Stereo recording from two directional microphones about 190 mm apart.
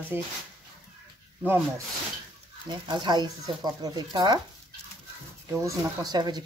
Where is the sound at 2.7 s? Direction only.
25° right (ahead or behind).